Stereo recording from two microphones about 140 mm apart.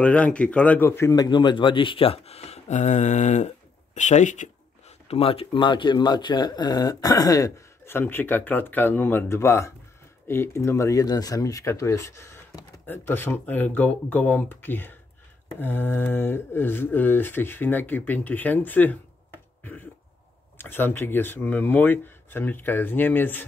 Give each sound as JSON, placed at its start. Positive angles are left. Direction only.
{"t": 0.0, "sound": "speech", "side_deg": 10}
{"t": 19.6, "sound": "throat clearing", "side_deg": 15}
{"t": 20.5, "sound": "speech", "side_deg": 15}